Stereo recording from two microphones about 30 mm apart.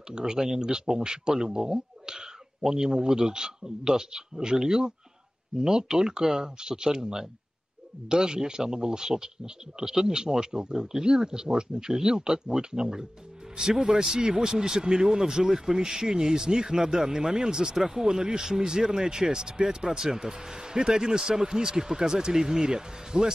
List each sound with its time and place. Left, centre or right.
0.1 s speech: right
18.0 s speech: right